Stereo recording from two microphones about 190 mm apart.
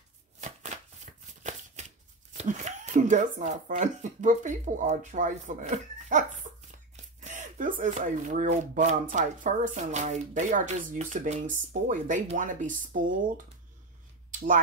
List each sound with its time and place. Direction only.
0.4 s shuffling cards: 40° right (ahead or behind)
2.3 s speech: 40° right (ahead or behind)